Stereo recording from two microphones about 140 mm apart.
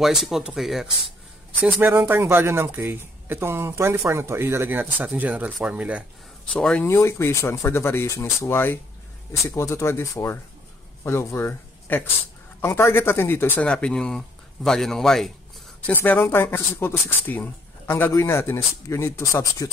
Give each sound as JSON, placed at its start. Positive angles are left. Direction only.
{"t": 0.0, "sound": "speech", "side_deg": 0}
{"t": 1.8, "sound": "speech", "side_deg": -15}
{"t": 6.5, "sound": "speech", "side_deg": 10}
{"t": 6.9, "sound": "speech", "side_deg": 20}
{"t": 15.9, "sound": "speech", "side_deg": 15}